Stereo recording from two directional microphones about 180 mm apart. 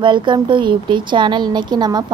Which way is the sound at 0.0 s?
25° right (ahead or behind).